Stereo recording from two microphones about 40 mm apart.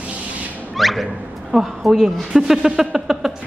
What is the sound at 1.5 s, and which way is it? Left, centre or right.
A woman's voice, centre.